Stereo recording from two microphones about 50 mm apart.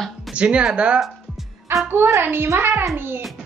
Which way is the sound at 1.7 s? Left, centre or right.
Right.